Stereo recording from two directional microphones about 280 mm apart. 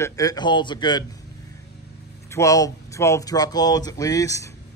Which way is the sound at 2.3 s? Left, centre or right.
Centre.